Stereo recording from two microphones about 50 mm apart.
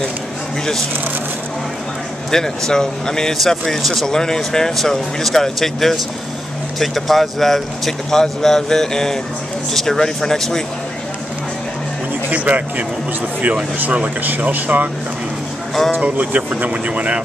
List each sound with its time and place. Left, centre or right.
2.3 s speech: centre
12.3 s speech: right
15.9 s speech: right